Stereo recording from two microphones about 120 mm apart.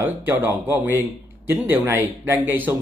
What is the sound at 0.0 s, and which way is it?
Speech, 15° right (ahead or behind).